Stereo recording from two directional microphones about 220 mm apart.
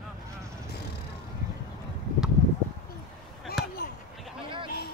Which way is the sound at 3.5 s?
45° left (ahead or behind).